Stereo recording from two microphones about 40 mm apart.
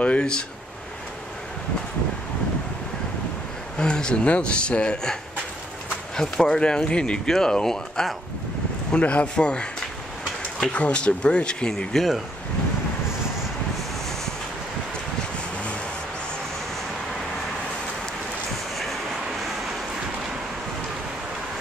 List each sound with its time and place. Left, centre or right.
0.0 s a sound: left
3.7 s speech: left
6.4 s speech: left
7.2 s speech: centre
8.9 s speech: left
11.9 s speech: centre